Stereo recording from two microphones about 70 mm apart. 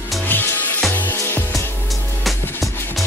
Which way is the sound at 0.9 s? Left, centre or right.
Left.